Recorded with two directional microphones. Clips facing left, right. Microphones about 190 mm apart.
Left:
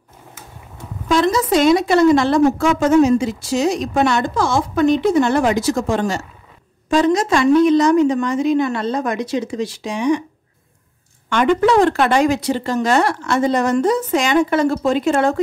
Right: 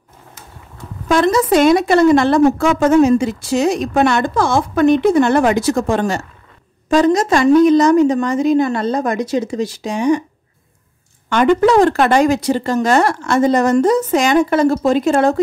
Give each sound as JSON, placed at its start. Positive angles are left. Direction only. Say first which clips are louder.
{"t": 1.0, "sound": "speech", "louder": "right 2 dB", "side_deg": -55}
{"t": 6.9, "sound": "a woman's voice", "louder": "right 2 dB", "side_deg": -40}
{"t": 11.2, "sound": "a woman's voice", "louder": "right 3 dB", "side_deg": -40}